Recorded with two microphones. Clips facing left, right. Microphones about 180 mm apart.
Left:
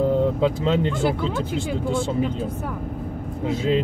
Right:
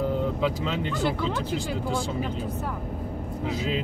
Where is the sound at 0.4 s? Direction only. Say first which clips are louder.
Left 6 dB; 30° left (ahead or behind).